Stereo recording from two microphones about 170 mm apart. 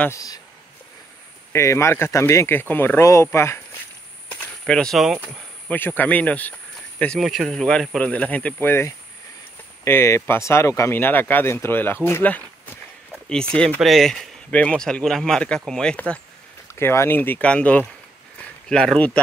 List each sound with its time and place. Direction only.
0.0 s speech: 20° left (ahead or behind)
1.5 s speech: 15° left (ahead or behind); by 5.4 s 5° right (ahead or behind)
5.7 s speech: 10° left (ahead or behind)
18.4 s a sound: 5° left (ahead or behind)